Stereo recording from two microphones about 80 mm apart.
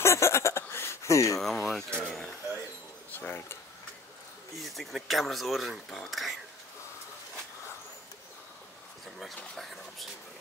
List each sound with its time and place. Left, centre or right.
0.0 s a sound: left
1.4 s speech: centre
3.1 s speech: left
4.6 s speech: centre
9.4 s speech: centre